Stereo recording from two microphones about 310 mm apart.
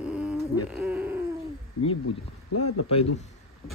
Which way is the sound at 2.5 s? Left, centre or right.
Left.